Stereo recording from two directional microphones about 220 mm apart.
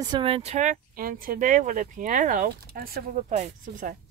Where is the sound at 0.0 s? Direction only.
20° right (ahead or behind).